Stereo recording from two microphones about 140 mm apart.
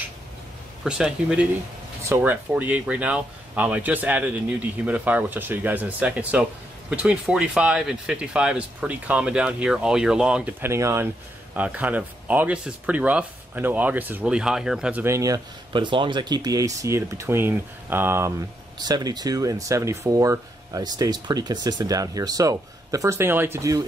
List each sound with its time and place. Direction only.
0.8 s speech: 5° right (ahead or behind)
18.8 s speech: 30° right (ahead or behind)